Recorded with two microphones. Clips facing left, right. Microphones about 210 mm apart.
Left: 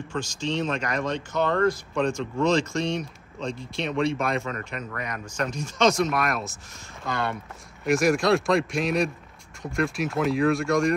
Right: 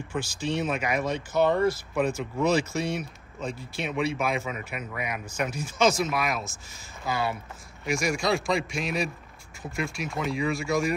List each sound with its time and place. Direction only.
0.1 s speech: 5° right (ahead or behind)